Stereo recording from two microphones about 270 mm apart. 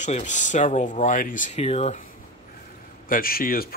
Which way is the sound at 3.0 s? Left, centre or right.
Left.